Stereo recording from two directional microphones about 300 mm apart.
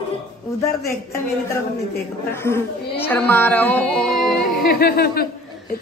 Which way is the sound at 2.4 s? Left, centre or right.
Centre.